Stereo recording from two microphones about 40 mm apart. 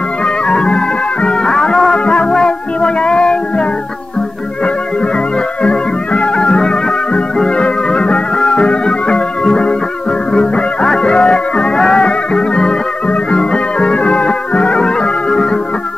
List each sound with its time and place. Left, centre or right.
0.2 s music: left
2.0 s music: left
4.6 s music: left